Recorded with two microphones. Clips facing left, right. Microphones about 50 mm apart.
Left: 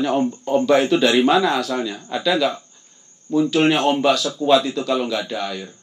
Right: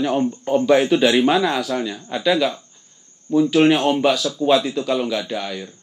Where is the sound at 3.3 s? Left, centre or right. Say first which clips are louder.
Right 2 dB; centre.